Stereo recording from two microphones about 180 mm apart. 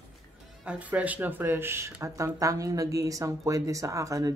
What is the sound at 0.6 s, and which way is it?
Speech, 10° right (ahead or behind).